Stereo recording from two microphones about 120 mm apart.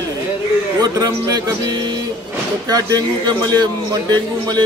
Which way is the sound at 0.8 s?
30° right (ahead or behind).